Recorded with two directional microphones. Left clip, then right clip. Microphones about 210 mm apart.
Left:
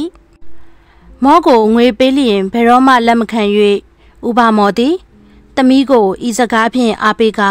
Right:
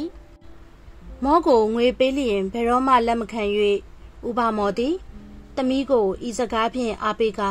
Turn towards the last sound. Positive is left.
turn(degrees=55)  # may be behind; listen again after turning